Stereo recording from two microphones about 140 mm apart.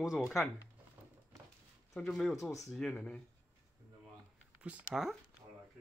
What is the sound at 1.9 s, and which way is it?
Speech, centre (ahead or behind).